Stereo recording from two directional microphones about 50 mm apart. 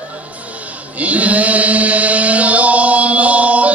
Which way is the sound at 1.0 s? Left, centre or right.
Right.